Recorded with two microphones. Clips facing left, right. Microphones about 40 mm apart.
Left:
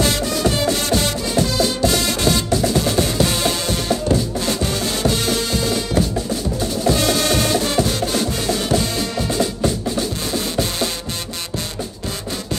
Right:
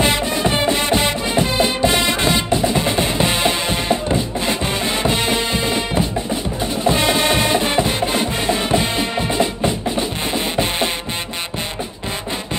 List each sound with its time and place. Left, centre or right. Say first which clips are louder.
0.0 s music: right 1 dB; right